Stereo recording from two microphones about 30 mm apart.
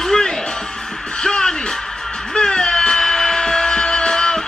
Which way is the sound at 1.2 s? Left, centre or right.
Left.